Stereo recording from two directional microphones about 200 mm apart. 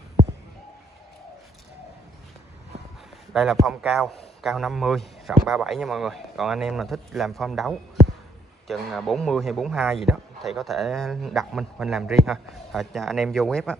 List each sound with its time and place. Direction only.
3.3 s a man's voice: centre (ahead or behind)